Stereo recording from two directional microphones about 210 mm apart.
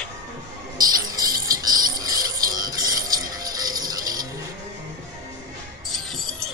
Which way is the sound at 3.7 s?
20° right (ahead or behind).